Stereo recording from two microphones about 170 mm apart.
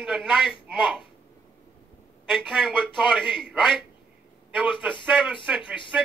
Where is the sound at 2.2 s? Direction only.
Centre (ahead or behind).